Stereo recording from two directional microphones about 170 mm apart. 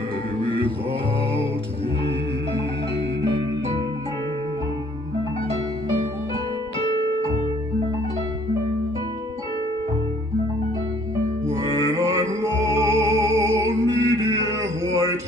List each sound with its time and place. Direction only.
11.9 s music: 20° right (ahead or behind)